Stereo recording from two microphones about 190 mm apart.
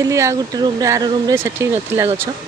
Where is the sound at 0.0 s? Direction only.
15° right (ahead or behind).